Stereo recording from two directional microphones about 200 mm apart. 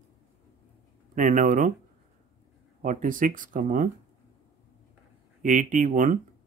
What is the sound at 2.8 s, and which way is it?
Speech, 40° right (ahead or behind).